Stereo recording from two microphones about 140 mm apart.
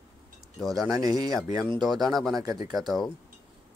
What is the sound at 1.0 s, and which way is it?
Speech, 25° right (ahead or behind).